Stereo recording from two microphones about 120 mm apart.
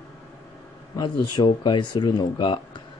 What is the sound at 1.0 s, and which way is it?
Speech, 35° left (ahead or behind).